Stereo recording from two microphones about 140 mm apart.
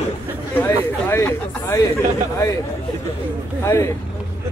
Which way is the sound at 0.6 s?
20° left (ahead or behind).